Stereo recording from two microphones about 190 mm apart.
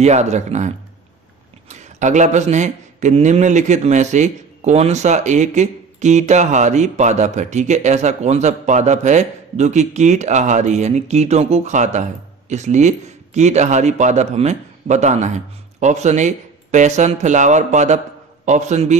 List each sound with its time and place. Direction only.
0.0 s speech: 35° right (ahead or behind)